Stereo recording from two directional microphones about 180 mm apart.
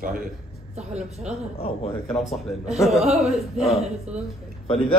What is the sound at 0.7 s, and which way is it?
Speech, 40° right (ahead or behind).